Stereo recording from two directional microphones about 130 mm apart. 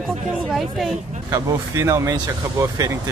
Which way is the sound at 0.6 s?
Centre (ahead or behind).